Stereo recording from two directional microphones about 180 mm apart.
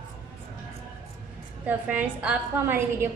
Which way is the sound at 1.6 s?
10° right (ahead or behind).